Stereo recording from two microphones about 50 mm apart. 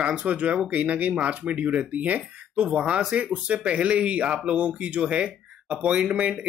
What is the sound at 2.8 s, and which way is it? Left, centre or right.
Speech, centre.